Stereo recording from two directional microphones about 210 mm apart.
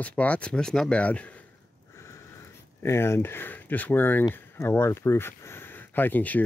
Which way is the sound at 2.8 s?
10° left (ahead or behind).